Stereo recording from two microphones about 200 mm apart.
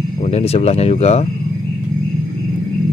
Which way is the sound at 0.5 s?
30° left (ahead or behind).